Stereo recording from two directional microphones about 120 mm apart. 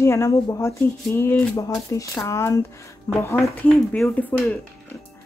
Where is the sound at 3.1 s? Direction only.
15° left (ahead or behind).